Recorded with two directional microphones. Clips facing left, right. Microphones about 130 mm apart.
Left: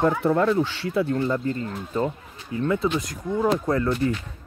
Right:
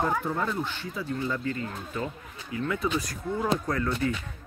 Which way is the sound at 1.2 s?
35° left (ahead or behind).